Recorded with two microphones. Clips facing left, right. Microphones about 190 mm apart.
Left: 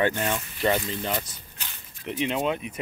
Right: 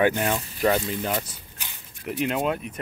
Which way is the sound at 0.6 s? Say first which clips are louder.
Right 2 dB; 5° right (ahead or behind).